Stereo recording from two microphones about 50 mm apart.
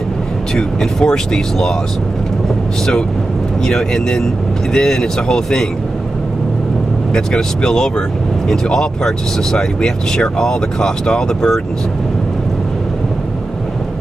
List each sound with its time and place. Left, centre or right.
0.6 s speech: centre
3.6 s speech: centre
7.2 s speech: centre